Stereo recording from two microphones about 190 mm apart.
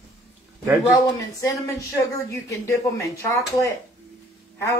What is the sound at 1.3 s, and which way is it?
A woman's voice, 15° left (ahead or behind).